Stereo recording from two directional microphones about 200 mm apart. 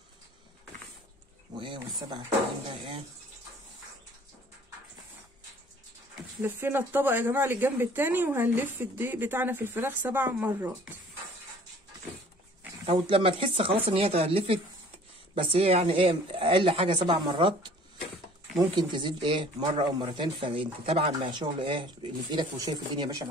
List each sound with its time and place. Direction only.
1.6 s speech: 25° right (ahead or behind)
6.4 s speech: 10° right (ahead or behind)
12.8 s speech: 30° right (ahead or behind)
18.8 s speech: 25° right (ahead or behind)